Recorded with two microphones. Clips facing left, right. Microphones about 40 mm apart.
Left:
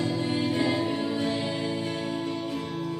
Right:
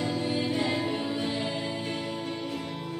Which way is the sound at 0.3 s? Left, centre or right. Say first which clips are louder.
Left 2 dB; centre.